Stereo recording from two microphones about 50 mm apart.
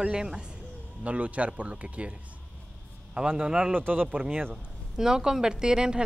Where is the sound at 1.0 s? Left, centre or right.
Right.